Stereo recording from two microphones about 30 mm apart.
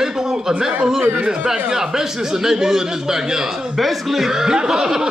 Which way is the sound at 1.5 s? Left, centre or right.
Centre.